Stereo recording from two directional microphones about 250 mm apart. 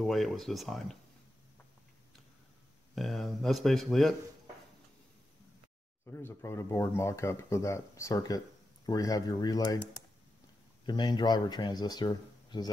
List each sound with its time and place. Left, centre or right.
0.0 s speech: centre
2.9 s speech: centre
6.0 s speech: centre
10.9 s speech: centre